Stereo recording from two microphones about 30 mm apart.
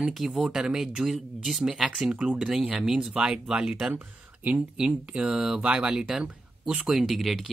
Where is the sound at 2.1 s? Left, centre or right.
Right.